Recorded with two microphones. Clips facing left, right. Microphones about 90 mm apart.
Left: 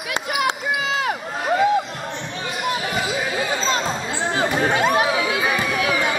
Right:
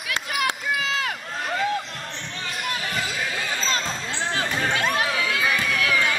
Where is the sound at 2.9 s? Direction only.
15° left (ahead or behind).